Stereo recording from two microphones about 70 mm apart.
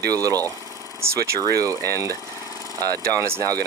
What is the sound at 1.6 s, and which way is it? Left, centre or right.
Speech, right.